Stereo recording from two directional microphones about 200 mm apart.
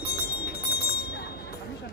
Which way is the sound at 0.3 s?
55° left (ahead or behind).